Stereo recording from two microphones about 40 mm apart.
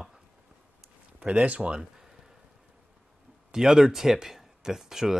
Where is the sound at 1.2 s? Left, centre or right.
Right.